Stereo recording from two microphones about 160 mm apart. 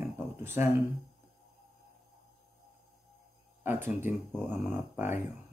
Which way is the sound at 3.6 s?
15° right (ahead or behind).